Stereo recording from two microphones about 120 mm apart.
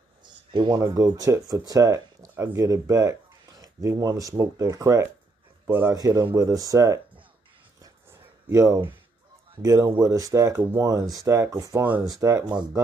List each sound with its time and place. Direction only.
0.2 s a sound: 40° right (ahead or behind)
0.7 s speech: 25° right (ahead or behind)
5.7 s a man's voice: 15° right (ahead or behind)
5.9 s speech: 30° right (ahead or behind)
7.8 s a sound: 25° right (ahead or behind)
9.6 s speech: 30° right (ahead or behind)
10.6 s a man's voice: 15° right (ahead or behind)
10.9 s speech: 30° right (ahead or behind)